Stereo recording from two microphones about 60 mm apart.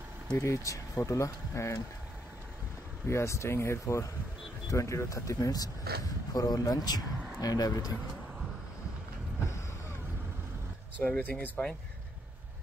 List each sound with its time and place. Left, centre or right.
0.3 s speech: left
3.1 s speech: left
11.0 s speech: left